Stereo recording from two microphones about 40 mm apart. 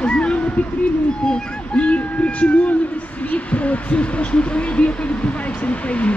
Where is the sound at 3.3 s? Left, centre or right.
Left.